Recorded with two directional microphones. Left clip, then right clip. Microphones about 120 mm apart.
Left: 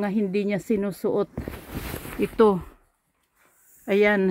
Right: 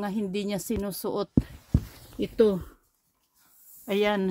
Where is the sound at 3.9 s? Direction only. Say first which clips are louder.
Left 5 dB; 25° left (ahead or behind).